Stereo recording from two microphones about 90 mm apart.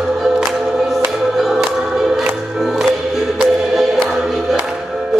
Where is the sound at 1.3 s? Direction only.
5° right (ahead or behind).